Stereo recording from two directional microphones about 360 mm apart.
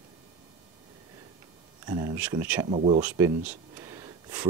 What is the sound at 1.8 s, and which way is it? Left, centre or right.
Speech, centre.